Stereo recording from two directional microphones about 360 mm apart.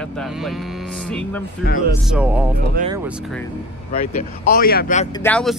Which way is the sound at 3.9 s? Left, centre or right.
Left.